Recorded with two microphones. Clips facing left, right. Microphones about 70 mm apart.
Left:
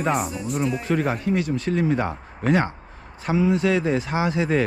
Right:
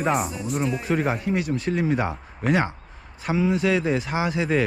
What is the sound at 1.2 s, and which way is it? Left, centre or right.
Speech, right.